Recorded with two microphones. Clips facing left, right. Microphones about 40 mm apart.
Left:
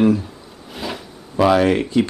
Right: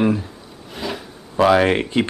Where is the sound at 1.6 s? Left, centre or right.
Right.